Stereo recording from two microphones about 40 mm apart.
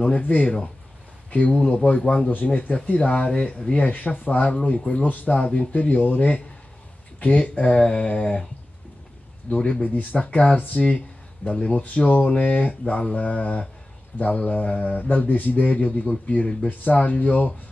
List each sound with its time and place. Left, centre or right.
0.1 s mantra: left
1.3 s mantra: left
4.5 s speech: left
5.0 s speech: left
5.3 s mantra: left
8.1 s speech: left
9.8 s mantra: left
11.4 s speech: left
11.7 s mantra: left
16.6 s speech: left